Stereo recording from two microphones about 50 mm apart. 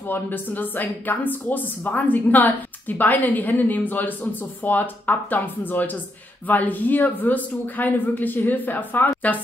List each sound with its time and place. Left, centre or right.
0.1 s speech: left